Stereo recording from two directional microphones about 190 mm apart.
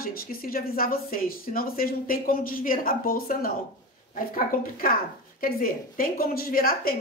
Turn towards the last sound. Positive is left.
turn(degrees=50)  # may be behind; listen again after turning